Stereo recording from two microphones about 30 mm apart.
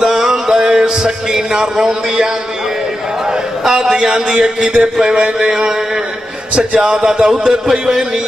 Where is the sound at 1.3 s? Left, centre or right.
Centre.